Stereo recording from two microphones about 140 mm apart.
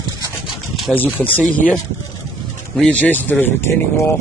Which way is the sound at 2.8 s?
10° left (ahead or behind).